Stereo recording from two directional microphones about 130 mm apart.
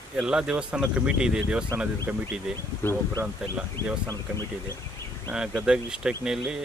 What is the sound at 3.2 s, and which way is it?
Speech, 10° right (ahead or behind).